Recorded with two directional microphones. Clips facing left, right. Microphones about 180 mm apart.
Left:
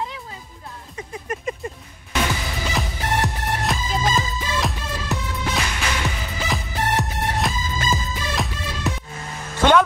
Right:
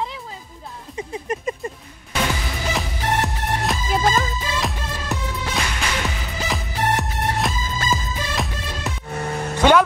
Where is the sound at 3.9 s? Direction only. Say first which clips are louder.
Right 4 dB; 60° right (ahead or behind).